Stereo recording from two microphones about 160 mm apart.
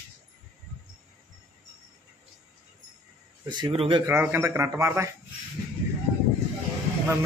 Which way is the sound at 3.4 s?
30° right (ahead or behind).